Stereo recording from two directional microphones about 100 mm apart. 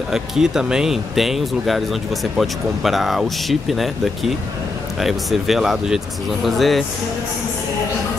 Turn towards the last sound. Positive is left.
turn(degrees=0)  # may be behind; listen again after turning